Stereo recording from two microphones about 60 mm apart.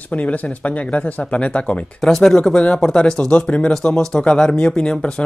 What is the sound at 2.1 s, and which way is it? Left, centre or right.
Speech, centre.